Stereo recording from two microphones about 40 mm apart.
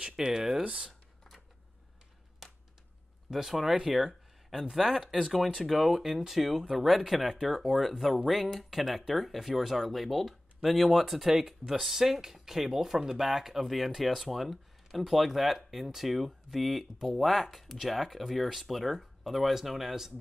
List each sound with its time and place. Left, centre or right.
0.0 s speech: centre
3.3 s speech: centre